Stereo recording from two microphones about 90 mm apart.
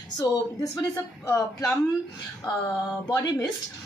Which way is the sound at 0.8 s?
40° left (ahead or behind).